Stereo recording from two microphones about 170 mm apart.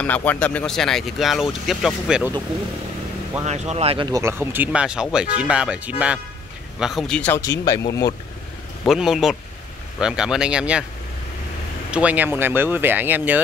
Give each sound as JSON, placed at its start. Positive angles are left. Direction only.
{"t": 0.0, "sound": "speech", "side_deg": 10}
{"t": 3.4, "sound": "speech", "side_deg": -40}
{"t": 4.1, "sound": "speech", "side_deg": -15}
{"t": 6.8, "sound": "speech", "side_deg": 0}
{"t": 8.8, "sound": "speech", "side_deg": 0}
{"t": 11.9, "sound": "speech", "side_deg": -10}